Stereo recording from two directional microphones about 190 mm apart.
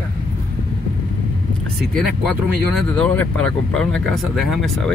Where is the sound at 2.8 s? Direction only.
5° left (ahead or behind).